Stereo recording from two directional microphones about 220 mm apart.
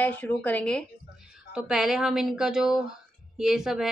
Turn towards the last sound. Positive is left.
turn(degrees=0)  # may be behind; listen again after turning